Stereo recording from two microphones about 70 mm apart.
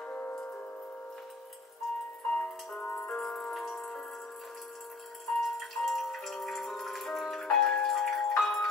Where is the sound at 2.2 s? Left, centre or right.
Centre.